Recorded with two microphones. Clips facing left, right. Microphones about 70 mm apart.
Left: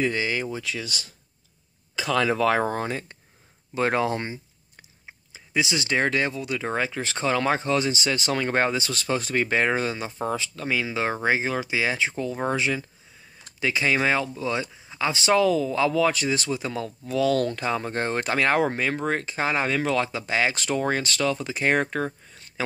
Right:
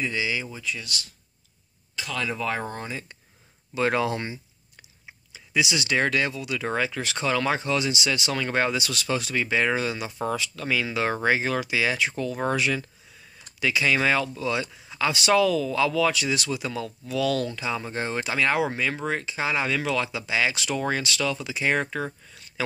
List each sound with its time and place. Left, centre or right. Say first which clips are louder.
0.1 s speech: left 2 dB; left
0.5 s speech: left 3 dB; left
2.2 s speech: left 6 dB; left
3.7 s speech: left 1 dB; left
17.5 s speech: left 3 dB; left